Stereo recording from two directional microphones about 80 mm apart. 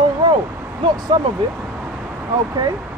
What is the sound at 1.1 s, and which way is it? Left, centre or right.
Speech, right.